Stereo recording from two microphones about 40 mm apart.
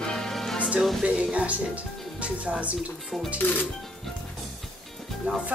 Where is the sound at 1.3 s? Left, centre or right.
Right.